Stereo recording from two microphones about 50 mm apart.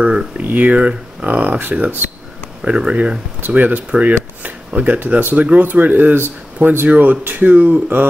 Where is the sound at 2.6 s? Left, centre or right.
Right.